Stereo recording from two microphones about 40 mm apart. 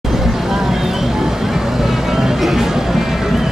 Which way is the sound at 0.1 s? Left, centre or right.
Centre.